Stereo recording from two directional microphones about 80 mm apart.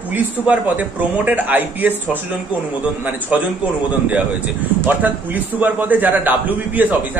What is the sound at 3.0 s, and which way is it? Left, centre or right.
Speech, right.